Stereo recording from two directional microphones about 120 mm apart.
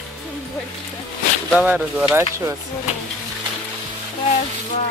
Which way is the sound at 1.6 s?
15° right (ahead or behind).